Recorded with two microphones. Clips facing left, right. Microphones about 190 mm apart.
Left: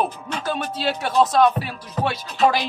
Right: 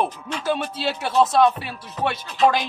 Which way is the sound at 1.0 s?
Centre (ahead or behind).